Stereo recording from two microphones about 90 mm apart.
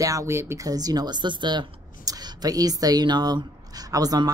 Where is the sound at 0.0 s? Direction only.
35° right (ahead or behind).